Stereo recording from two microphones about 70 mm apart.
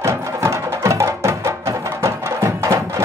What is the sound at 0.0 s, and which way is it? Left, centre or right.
Music, right.